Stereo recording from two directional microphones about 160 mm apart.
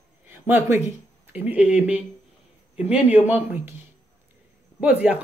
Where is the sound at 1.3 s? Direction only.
10° right (ahead or behind).